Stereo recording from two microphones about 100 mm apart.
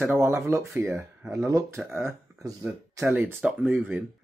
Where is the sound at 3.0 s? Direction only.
20° right (ahead or behind).